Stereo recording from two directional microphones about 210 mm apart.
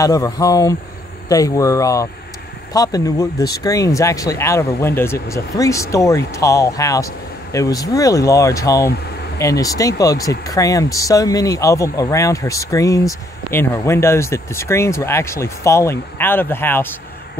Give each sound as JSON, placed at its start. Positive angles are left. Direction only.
{"t": 0.0, "sound": "speech", "side_deg": 15}